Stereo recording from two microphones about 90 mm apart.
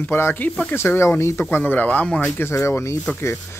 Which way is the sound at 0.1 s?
25° left (ahead or behind).